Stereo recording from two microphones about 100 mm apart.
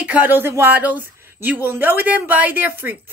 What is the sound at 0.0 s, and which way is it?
Speech, 15° right (ahead or behind).